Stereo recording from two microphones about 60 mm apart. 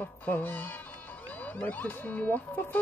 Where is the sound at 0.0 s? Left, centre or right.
Left.